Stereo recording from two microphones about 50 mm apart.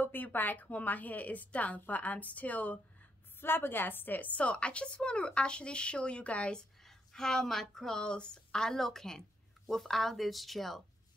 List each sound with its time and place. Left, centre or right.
0.0 s a woman's voice: left
3.3 s a woman's voice: left
6.8 s a woman's voice: centre